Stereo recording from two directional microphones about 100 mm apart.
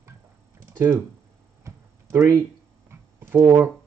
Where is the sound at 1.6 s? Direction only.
30° right (ahead or behind).